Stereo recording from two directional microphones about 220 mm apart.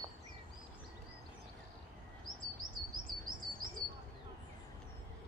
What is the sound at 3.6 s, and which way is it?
Bird, 15° left (ahead or behind).